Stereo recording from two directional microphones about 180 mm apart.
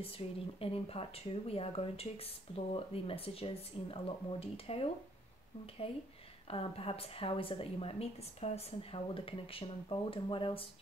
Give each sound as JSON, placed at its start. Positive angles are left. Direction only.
{"t": 0.2, "sound": "a woman's voice", "side_deg": 35}
{"t": 6.5, "sound": "a woman's voice", "side_deg": 30}